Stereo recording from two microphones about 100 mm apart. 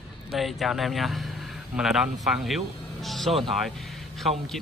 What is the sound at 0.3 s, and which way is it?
A man's voice, centre (ahead or behind).